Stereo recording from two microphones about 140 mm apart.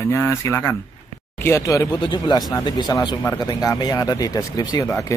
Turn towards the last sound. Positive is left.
turn(degrees=25)  # may be behind; listen again after turning